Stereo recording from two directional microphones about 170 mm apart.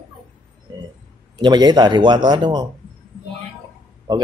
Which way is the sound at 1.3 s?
25° right (ahead or behind).